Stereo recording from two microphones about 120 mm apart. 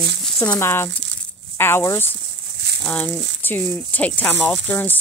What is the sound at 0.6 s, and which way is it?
Speech, 20° left (ahead or behind).